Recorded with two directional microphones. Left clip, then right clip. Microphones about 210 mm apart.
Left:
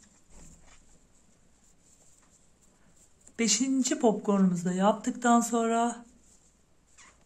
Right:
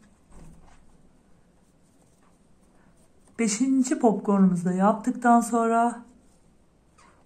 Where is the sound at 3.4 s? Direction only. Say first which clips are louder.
Right 3 dB; 30° left (ahead or behind).